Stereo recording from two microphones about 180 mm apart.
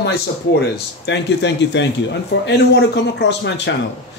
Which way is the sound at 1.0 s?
75° left (ahead or behind).